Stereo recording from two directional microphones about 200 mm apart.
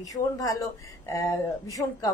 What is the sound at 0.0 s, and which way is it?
Speech, 15° left (ahead or behind).